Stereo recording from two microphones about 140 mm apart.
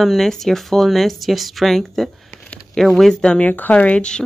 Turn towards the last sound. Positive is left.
turn(degrees=10)  # may be behind; listen again after turning